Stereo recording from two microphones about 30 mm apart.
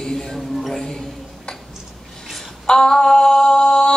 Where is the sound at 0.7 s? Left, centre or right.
Centre.